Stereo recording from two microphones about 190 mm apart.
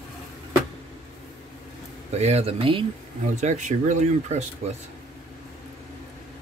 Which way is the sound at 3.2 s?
40° right (ahead or behind).